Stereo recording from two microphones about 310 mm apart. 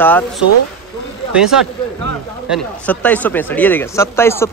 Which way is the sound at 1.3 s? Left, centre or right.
Centre.